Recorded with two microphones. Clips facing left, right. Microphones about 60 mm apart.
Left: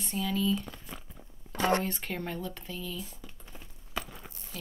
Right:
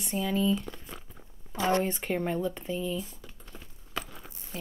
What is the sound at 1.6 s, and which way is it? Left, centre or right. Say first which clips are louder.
Speech: right 1 dB; left.